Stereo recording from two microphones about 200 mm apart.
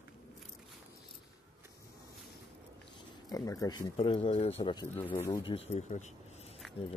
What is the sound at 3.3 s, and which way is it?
Speech, 15° left (ahead or behind).